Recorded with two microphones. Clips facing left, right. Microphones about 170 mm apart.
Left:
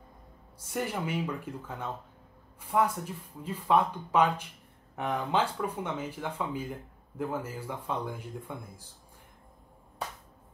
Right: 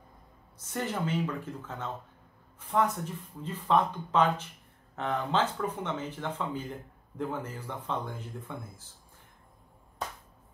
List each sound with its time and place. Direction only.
0.6 s speech: 10° left (ahead or behind)